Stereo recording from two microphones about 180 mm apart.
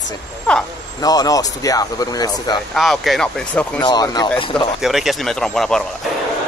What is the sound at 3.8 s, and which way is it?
Speech, 20° left (ahead or behind).